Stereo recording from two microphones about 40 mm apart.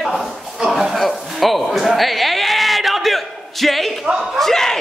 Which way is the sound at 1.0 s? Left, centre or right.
Centre.